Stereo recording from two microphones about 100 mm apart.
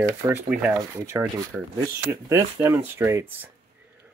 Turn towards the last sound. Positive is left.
turn(degrees=-25)  # may be behind; listen again after turning